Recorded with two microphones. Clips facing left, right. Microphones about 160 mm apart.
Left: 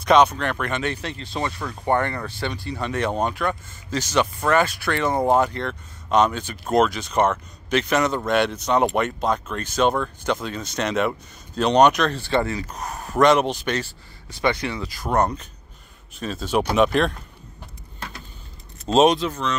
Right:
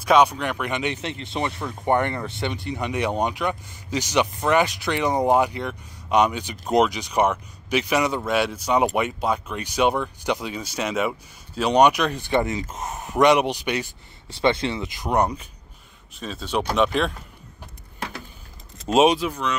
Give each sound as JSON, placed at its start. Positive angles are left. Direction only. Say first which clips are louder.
{"t": 0.0, "sound": "speech", "louder": "left 1 dB", "side_deg": -10}
{"t": 14.3, "sound": "speech", "louder": "right 2 dB", "side_deg": -25}
{"t": 16.2, "sound": "speech", "louder": "left 3 dB", "side_deg": 0}
{"t": 18.9, "sound": "speech", "louder": "left 1 dB", "side_deg": -10}